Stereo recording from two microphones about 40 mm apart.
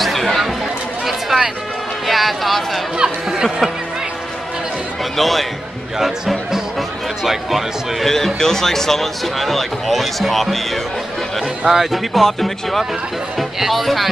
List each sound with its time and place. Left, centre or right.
0.0 s a sound: centre
1.3 s speech: centre
2.0 s speech: centre
3.0 s speech: centre
5.1 s speech: centre
5.9 s speech: centre
8.0 s speech: centre